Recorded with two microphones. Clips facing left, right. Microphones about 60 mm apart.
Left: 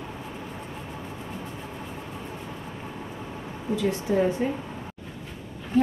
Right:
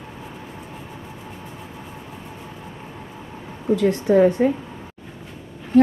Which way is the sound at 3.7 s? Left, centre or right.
Right.